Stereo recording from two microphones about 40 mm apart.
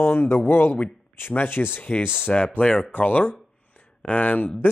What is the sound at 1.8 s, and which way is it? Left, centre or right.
Speech, left.